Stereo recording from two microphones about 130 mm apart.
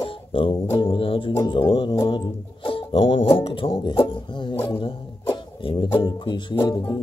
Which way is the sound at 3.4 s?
40° left (ahead or behind).